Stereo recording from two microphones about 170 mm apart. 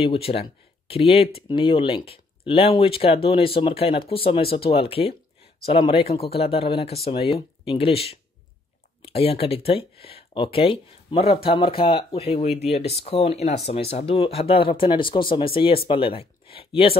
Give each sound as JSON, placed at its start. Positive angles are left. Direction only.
{"t": 0.0, "sound": "speech", "side_deg": 35}